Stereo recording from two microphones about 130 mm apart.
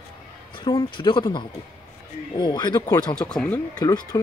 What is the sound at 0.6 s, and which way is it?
Speech, 40° left (ahead or behind).